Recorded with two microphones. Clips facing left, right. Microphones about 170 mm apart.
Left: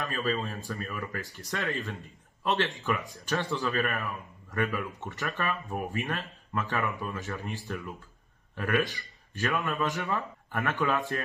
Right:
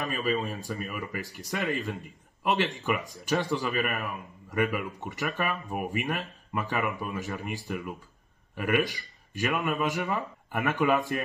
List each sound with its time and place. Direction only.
0.0 s speech: 15° right (ahead or behind)